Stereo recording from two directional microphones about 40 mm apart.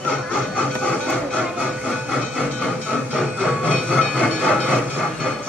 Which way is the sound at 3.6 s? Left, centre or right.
Left.